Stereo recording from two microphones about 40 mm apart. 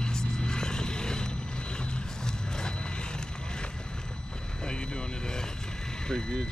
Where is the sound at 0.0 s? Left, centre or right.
Centre.